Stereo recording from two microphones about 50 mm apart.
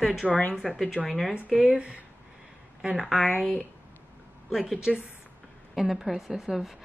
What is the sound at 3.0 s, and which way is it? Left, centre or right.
Speech, centre.